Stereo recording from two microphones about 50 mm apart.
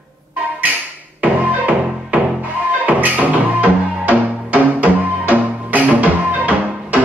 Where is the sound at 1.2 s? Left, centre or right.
Right.